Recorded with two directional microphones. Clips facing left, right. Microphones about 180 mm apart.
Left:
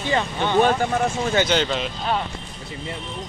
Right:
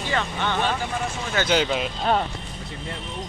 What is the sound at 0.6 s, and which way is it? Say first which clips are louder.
Speech: left 10 dB; 45° left (ahead or behind).